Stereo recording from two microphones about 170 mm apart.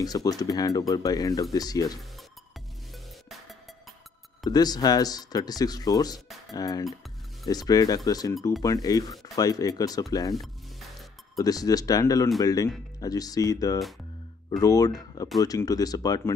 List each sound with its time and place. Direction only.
0.0 s speech: 20° left (ahead or behind)
4.5 s speech: 25° left (ahead or behind)
10.3 s music: centre (ahead or behind)
11.3 s speech: 20° left (ahead or behind)